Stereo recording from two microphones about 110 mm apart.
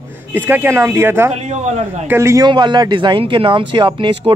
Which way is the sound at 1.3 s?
90° right.